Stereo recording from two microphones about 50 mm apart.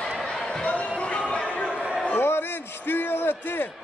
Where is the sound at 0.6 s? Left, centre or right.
Left.